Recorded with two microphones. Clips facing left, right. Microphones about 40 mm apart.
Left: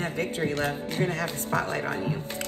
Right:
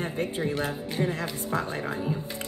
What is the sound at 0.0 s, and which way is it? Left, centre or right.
Speech, left.